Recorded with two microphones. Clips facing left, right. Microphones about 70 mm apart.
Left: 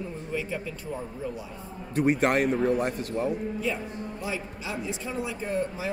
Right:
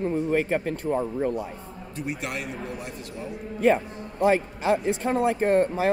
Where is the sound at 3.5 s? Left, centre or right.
Right.